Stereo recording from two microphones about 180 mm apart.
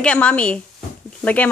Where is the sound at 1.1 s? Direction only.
10° left (ahead or behind).